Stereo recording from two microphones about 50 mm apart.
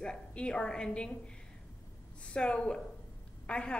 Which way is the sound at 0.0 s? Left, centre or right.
Left.